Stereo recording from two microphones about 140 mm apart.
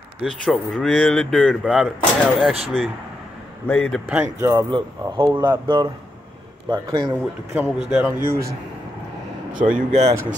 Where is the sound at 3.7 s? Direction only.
10° left (ahead or behind).